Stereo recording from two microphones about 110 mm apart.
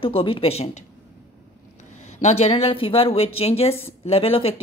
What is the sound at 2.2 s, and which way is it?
Speech, 75° left (ahead or behind).